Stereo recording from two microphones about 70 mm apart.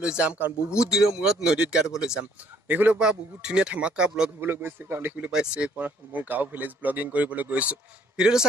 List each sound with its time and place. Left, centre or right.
0.0 s speech: centre
2.7 s speech: right
3.0 s speech: centre
4.4 s a man's voice: right
5.1 s speech: centre
8.2 s speech: centre